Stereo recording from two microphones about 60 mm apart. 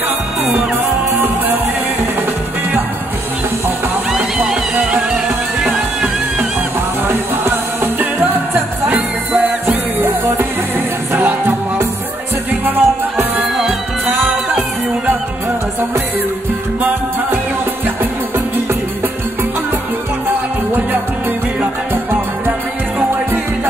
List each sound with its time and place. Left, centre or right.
1.1 s music: right
4.1 s music: centre
7.1 s music: right
8.8 s music: right
20.2 s music: right